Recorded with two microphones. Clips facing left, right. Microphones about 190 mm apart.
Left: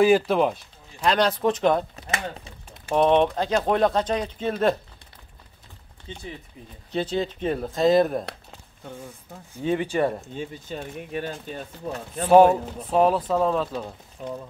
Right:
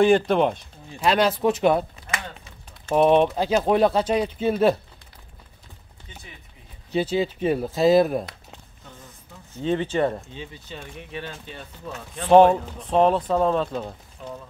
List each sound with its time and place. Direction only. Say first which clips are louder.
0.0 s speech: right 1 dB; 5° left (ahead or behind)
3.0 s speech: right 2 dB; 5° right (ahead or behind)
6.1 s speech: left 8 dB; 25° left (ahead or behind)
6.9 s speech: right 3 dB; 5° right (ahead or behind)
9.6 s speech: right 1 dB; 10° left (ahead or behind)
10.3 s speech: left 5 dB; 45° left (ahead or behind)
12.2 s speech: right 1 dB; 5° left (ahead or behind)